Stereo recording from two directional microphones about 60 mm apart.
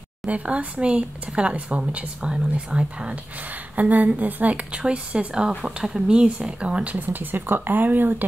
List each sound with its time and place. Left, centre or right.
0.3 s speech: right